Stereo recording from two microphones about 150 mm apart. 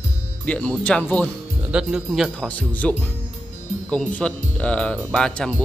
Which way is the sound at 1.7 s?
5° right (ahead or behind).